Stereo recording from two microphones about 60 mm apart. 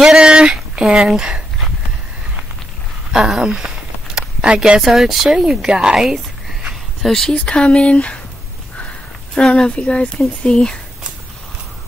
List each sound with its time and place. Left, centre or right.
0.0 s a sound: centre
3.1 s speech: centre
7.0 s speech: centre
7.3 s speech: centre
9.3 s speech: centre